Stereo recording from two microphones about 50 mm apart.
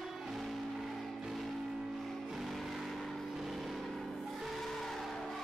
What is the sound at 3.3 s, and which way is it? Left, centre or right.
Music, centre.